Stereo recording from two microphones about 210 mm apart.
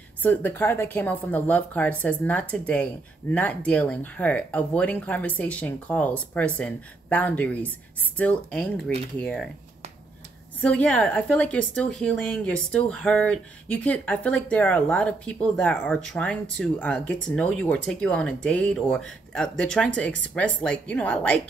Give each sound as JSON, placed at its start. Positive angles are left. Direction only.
{"t": 0.2, "sound": "a woman's voice", "side_deg": 10}
{"t": 10.6, "sound": "a woman's voice", "side_deg": 5}